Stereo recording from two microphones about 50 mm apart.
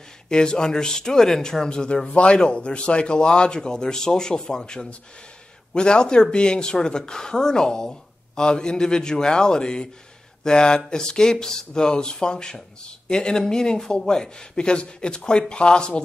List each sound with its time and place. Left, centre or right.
0.3 s speech: centre